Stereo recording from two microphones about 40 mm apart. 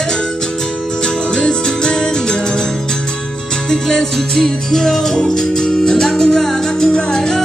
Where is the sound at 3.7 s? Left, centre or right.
Centre.